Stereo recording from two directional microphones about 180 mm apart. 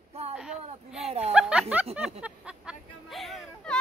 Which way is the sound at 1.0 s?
35° right (ahead or behind).